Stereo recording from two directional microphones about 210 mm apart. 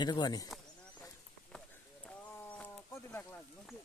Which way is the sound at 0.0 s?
20° left (ahead or behind).